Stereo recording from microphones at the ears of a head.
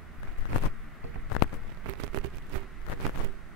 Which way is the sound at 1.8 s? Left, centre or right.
Right.